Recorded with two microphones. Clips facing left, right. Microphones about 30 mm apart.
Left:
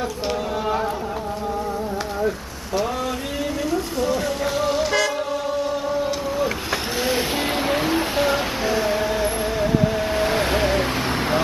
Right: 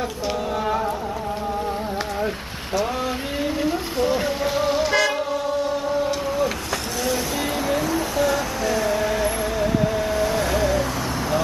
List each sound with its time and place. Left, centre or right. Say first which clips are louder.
3.6 s vehicle: even; right
4.6 s vehicle: right 1 dB; centre
7.6 s a sound: left 1 dB; left; by 9.7 s centre
10.1 s vehicle: left 1 dB; left